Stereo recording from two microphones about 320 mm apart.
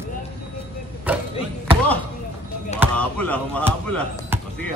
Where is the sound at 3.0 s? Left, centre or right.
Centre.